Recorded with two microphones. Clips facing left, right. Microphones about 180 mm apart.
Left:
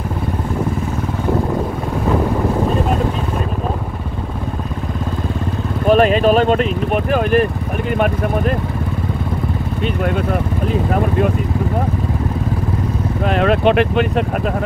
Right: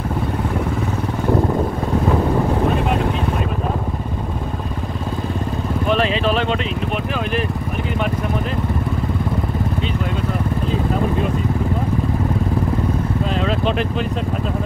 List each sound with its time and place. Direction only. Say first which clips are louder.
5.9 s vehicle: left 7 dB; 50° left (ahead or behind)
13.2 s vehicle: left 10 dB; 65° left (ahead or behind)